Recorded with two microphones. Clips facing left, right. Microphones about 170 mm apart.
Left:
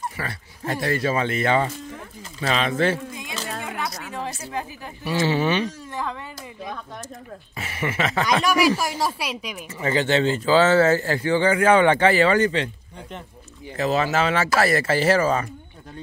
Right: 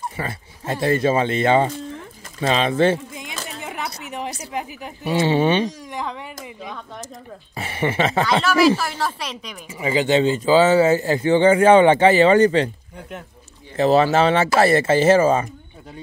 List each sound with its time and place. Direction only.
0.2 s speech: 25° right (ahead or behind)
3.6 s a sound: 25° right (ahead or behind)
5.1 s speech: 25° right (ahead or behind)
5.7 s a woman's voice: 15° right (ahead or behind)
7.5 s speech: 30° right (ahead or behind)
8.3 s speech: 15° left (ahead or behind)
9.7 s speech: 10° right (ahead or behind); by 12.6 s 35° right (ahead or behind)
13.7 s speech: 30° right (ahead or behind)